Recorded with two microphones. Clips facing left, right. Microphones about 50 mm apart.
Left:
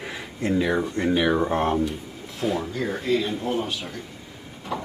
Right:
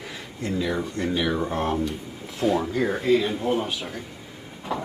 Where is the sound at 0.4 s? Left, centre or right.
Left.